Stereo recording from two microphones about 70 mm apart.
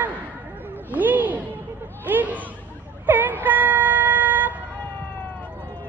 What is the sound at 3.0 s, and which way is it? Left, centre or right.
Vehicle, right.